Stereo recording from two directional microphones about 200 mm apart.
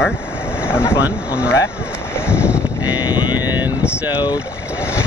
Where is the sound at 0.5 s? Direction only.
10° left (ahead or behind).